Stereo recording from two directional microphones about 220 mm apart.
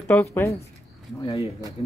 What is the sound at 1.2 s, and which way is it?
Speech, 25° left (ahead or behind).